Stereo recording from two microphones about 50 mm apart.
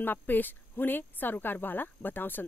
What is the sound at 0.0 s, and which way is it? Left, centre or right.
Speech, left.